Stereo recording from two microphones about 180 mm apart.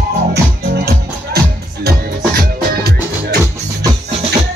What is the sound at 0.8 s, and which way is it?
Music, 60° right (ahead or behind).